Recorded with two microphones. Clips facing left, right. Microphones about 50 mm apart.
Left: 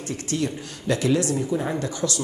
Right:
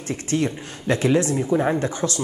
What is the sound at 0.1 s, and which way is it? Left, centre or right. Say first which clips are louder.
Speech: right 4 dB; right.